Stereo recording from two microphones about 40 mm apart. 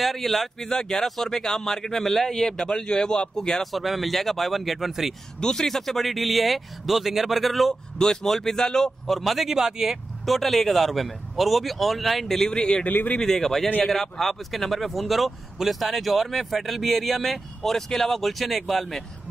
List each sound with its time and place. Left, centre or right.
0.0 s a man's voice: centre
3.7 s speech: centre
5.4 s speech: centre
8.0 s a man's voice: centre
9.1 s speech: centre
10.2 s speech: centre
12.4 s a man's voice: left
12.9 s speech: left
13.2 s a man's voice: centre